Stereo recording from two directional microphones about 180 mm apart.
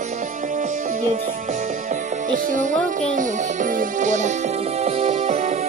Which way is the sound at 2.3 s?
45° right (ahead or behind).